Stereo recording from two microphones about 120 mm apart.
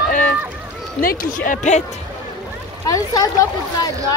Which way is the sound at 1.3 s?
90° left.